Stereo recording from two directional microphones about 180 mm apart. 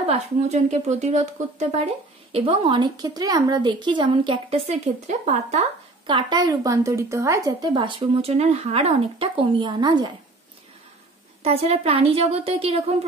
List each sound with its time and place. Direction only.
0.0 s a woman's voice: 40° right (ahead or behind)
6.1 s a woman's voice: 25° right (ahead or behind)
11.4 s speech: 35° right (ahead or behind)